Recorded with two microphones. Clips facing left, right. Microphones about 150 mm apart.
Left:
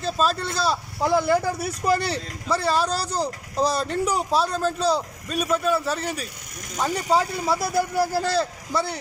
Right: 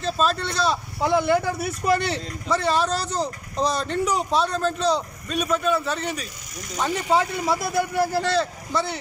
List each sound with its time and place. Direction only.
0.0 s a man's voice: 5° left (ahead or behind)
2.0 s a man's voice: 35° left (ahead or behind)
2.4 s a man's voice: 5° left (ahead or behind)
7.4 s a man's voice: centre (ahead or behind)